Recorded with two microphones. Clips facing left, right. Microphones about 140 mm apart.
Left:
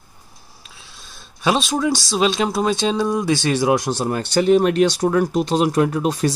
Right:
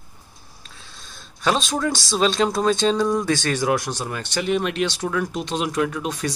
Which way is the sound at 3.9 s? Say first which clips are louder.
Left 7 dB; 35° left (ahead or behind).